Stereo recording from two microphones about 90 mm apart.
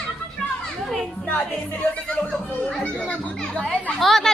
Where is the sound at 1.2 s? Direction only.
15° left (ahead or behind).